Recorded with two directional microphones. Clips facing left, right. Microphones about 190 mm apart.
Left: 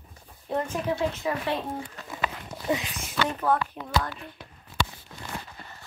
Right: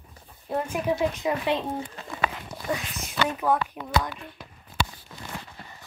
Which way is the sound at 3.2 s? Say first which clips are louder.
Right 1 dB; 10° right (ahead or behind).